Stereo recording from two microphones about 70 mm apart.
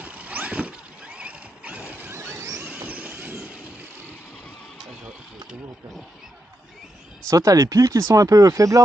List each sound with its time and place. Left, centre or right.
0.0 s vehicle: right
2.1 s a sound: right
2.6 s vehicle: right
7.2 s speech: right